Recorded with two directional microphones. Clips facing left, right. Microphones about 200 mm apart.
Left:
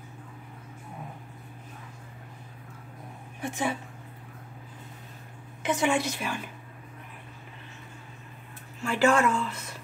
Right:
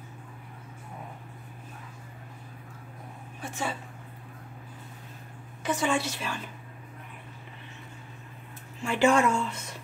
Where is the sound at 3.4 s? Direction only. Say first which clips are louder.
Left 4 dB; 15° left (ahead or behind).